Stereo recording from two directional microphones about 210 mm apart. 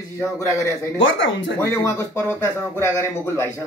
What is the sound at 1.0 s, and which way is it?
Speech, 65° left (ahead or behind).